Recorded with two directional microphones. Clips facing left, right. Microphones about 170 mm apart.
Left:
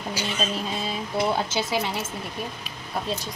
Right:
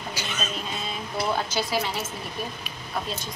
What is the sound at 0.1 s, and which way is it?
Speech, 30° left (ahead or behind).